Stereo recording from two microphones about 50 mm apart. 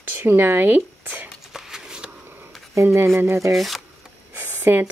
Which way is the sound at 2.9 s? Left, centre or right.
Right.